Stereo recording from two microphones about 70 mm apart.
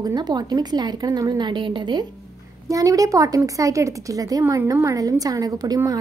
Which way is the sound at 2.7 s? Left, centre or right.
Right.